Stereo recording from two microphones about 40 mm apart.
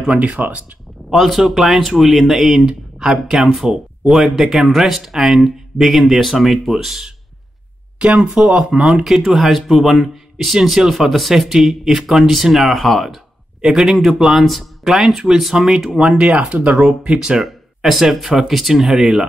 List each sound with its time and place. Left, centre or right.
0.1 s speech: right
1.1 s speech: centre
2.6 s speech: right
8.0 s speech: right
9.3 s speech: centre
13.6 s speech: centre
16.0 s speech: right
17.4 s speech: centre